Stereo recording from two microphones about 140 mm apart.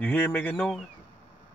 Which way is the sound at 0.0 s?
15° left (ahead or behind).